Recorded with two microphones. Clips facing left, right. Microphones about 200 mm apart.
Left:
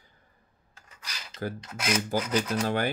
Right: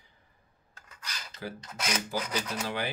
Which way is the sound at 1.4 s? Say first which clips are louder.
Left 6 dB; 45° left (ahead or behind).